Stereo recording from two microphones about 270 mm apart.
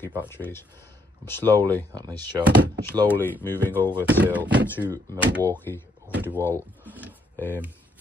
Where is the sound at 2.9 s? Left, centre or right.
Centre.